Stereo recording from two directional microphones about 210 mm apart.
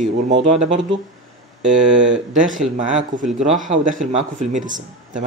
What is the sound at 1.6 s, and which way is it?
Speech, 60° right (ahead or behind).